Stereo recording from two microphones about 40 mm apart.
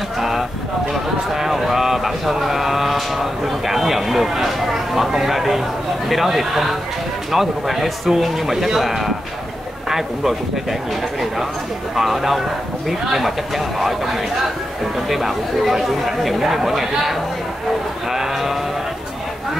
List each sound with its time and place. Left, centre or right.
0.2 s a sound: centre
1.3 s a man's voice: centre
11.9 s speech: centre
13.7 s speech: centre
18.1 s livestock: centre